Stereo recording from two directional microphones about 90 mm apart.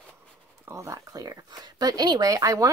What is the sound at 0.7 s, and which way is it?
Speech, 35° right (ahead or behind).